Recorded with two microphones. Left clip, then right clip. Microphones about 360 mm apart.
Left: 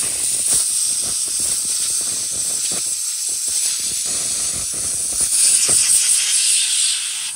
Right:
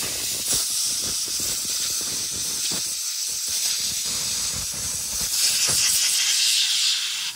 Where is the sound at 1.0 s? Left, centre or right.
Centre.